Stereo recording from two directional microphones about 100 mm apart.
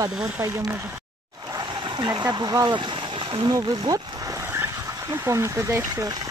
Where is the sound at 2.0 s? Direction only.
45° right (ahead or behind).